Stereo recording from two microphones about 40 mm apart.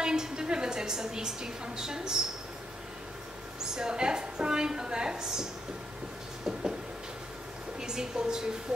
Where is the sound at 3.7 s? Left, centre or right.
Centre.